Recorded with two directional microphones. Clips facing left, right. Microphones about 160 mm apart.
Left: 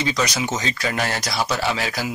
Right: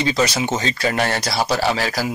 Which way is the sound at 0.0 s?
30° right (ahead or behind).